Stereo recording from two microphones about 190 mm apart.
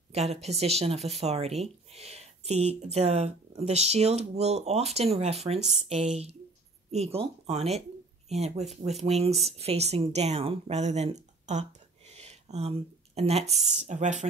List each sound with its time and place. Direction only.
0.1 s speech: 35° right (ahead or behind)
12.1 s a sound: 35° right (ahead or behind)
13.6 s speech: 35° right (ahead or behind)